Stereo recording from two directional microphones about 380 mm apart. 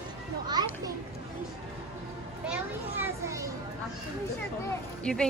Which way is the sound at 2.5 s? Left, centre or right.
Centre.